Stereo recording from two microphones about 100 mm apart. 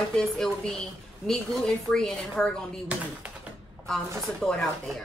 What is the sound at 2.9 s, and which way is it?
Speech, 10° right (ahead or behind).